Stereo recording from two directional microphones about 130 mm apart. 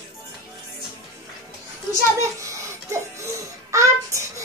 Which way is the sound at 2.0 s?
20° right (ahead or behind).